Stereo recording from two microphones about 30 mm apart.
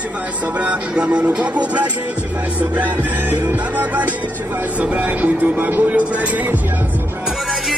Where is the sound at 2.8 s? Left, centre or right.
Right.